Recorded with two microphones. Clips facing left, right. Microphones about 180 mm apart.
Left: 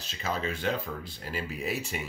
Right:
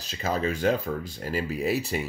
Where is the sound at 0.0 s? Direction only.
40° right (ahead or behind).